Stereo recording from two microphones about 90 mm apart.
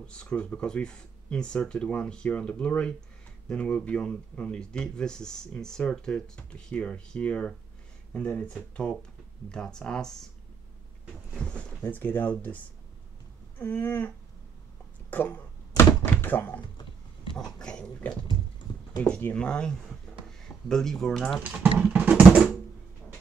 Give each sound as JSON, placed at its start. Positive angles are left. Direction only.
{"t": 0.0, "sound": "speech", "side_deg": 10}
{"t": 11.3, "sound": "speech", "side_deg": 15}
{"t": 13.6, "sound": "a sound", "side_deg": 25}
{"t": 15.0, "sound": "speech", "side_deg": 20}
{"t": 16.1, "sound": "thunk", "side_deg": 25}
{"t": 17.4, "sound": "speech", "side_deg": 5}
{"t": 21.9, "sound": "music", "side_deg": -15}